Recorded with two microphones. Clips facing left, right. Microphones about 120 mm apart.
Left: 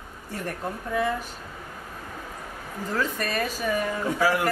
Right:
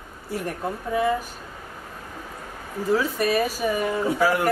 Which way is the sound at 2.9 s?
10° right (ahead or behind).